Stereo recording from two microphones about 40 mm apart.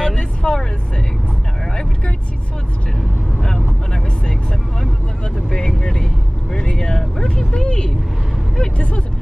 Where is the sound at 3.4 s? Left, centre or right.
Centre.